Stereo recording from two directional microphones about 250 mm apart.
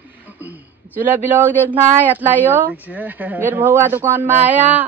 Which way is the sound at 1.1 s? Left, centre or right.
Centre.